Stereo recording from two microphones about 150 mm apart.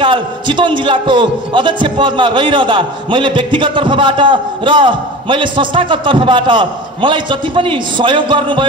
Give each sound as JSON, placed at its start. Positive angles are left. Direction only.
{"t": 0.0, "sound": "a man's voice", "side_deg": -35}